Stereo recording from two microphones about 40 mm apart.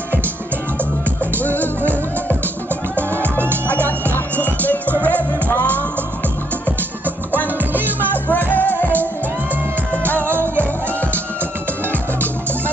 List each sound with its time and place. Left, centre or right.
1.2 s music: left
3.6 s music: left
7.3 s music: right
8.3 s music: left
10.3 s music: right